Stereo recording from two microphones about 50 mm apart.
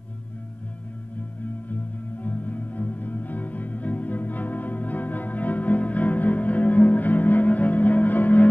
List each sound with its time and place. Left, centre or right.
2.2 s music: left